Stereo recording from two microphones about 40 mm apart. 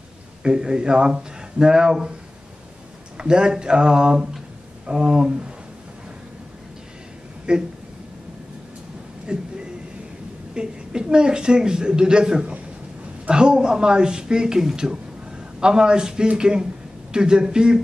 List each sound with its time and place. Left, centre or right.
0.4 s a woman's voice: right
3.2 s a woman's voice: right
7.5 s a woman's voice: right
9.3 s a woman's voice: right
10.5 s a woman's voice: centre